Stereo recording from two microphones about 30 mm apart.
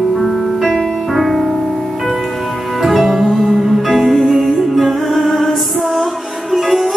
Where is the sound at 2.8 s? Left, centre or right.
Centre.